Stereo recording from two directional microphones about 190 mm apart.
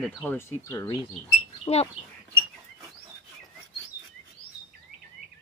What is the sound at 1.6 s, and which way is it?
Speech, 30° left (ahead or behind).